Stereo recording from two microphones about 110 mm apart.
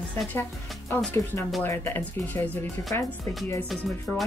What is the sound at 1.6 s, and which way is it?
Speech, 20° left (ahead or behind).